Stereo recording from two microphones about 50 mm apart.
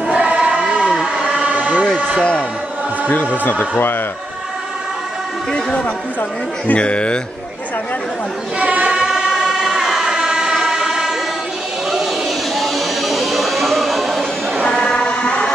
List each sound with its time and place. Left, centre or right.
0.1 s choir: right
1.0 s vehicle: centre
1.4 s vehicle: right
3.1 s speech: left
6.7 s speech: left
8.5 s choir: right
8.9 s vehicle: centre
12.5 s music: centre
14.8 s a sound: left